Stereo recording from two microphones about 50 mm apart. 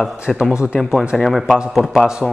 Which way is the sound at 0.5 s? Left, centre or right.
Right.